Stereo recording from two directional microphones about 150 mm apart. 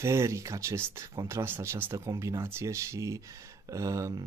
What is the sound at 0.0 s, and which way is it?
Speech, 20° right (ahead or behind).